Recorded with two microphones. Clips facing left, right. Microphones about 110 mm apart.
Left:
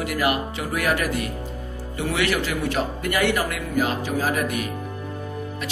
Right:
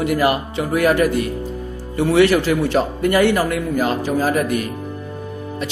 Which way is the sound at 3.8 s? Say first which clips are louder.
Right 3 dB; 45° right (ahead or behind).